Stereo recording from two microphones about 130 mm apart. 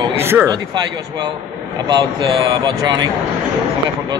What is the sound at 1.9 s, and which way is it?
Speech, 35° right (ahead or behind).